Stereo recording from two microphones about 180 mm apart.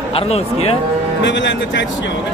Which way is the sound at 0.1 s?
35° left (ahead or behind).